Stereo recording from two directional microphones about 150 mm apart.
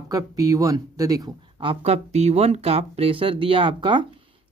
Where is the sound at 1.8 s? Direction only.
45° right (ahead or behind).